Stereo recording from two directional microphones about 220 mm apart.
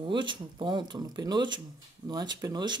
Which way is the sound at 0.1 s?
20° right (ahead or behind).